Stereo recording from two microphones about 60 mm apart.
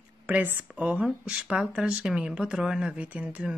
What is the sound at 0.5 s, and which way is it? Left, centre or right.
Speech, right.